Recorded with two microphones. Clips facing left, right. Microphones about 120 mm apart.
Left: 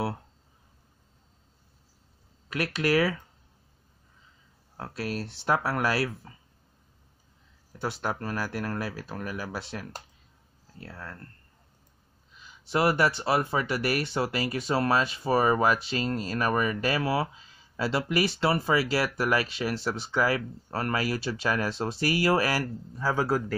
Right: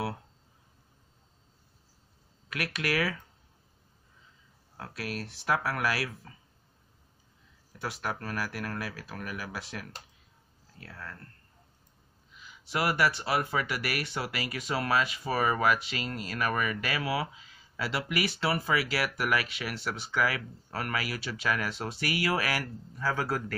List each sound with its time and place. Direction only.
2.5 s speech: 30° left (ahead or behind)
4.7 s speech: 30° left (ahead or behind)
7.8 s speech: 30° left (ahead or behind)
12.4 s speech: 30° left (ahead or behind)